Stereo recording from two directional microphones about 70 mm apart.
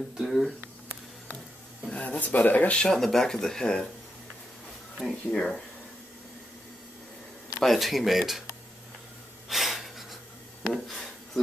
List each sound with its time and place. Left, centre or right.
0.2 s speech: centre
1.9 s speech: centre
2.9 s speech: centre
4.9 s speech: centre
7.6 s speech: centre
9.5 s breathing: centre
10.7 s speech: centre